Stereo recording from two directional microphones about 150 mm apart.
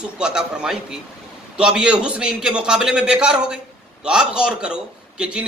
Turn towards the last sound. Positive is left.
turn(degrees=-5)  # may be behind; listen again after turning